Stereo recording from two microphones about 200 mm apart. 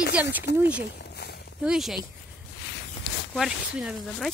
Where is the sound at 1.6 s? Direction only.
Centre (ahead or behind).